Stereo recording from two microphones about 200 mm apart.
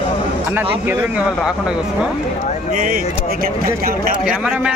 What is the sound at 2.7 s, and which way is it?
Speech, 45° right (ahead or behind).